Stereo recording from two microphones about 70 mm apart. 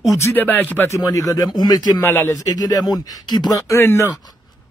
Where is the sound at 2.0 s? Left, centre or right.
Left.